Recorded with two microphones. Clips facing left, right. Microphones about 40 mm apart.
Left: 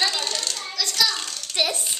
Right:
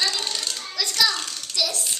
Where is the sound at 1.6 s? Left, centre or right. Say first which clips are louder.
Left 2 dB; left.